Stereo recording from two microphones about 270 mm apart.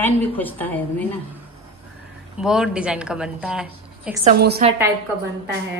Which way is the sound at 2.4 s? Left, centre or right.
Centre.